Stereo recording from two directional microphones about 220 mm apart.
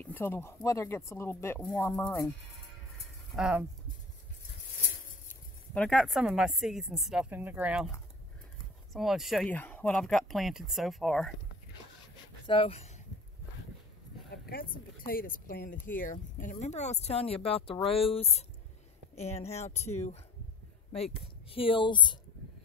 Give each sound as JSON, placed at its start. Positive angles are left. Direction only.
{"t": 0.0, "sound": "speech", "side_deg": 10}
{"t": 3.3, "sound": "speech", "side_deg": -5}
{"t": 5.8, "sound": "speech", "side_deg": 5}
{"t": 8.9, "sound": "speech", "side_deg": 0}
{"t": 12.4, "sound": "speech", "side_deg": 25}
{"t": 14.3, "sound": "speech", "side_deg": 45}
{"t": 20.9, "sound": "speech", "side_deg": 30}